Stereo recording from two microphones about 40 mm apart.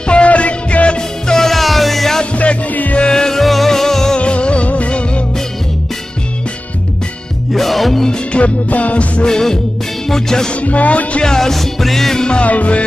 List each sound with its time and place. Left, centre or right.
0.0 s music: left; by 2.1 s centre
2.3 s music: left
3.0 s music: centre
4.2 s music: left
7.5 s music: centre
8.3 s music: left
9.2 s music: centre
10.5 s music: left
11.2 s music: centre
12.4 s music: left